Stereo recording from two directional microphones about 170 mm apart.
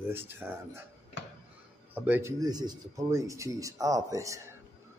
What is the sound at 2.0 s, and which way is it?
Speech, 10° right (ahead or behind).